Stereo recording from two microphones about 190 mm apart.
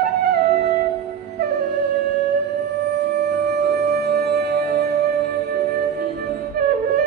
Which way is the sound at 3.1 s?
60° right (ahead or behind).